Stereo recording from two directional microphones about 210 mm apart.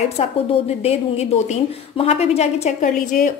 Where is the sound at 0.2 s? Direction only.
30° left (ahead or behind).